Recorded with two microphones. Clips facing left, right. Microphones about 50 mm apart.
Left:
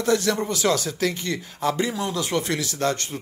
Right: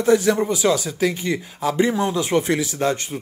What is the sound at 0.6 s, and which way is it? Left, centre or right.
Speech, centre.